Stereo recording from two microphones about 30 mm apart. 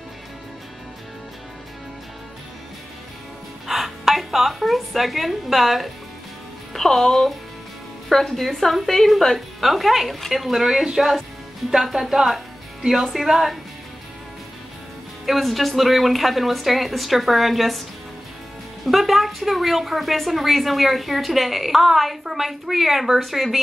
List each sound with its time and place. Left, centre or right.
3.6 s music: centre
6.7 s a woman's voice: centre
13.1 s a woman's voice: centre
15.2 s a woman's voice: centre
18.9 s a woman's voice: centre